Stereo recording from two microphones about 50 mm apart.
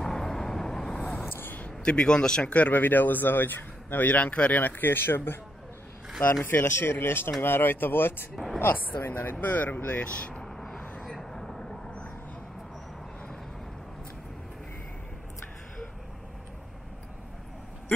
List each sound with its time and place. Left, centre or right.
0.0 s vehicle: centre
1.3 s a sound: left
1.9 s speech: centre
2.4 s speech: left
4.1 s speech: left
6.4 s speech: left
9.9 s speech: left
10.4 s vehicle: centre